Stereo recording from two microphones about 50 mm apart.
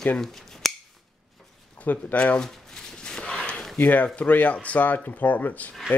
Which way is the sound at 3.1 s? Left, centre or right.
Centre.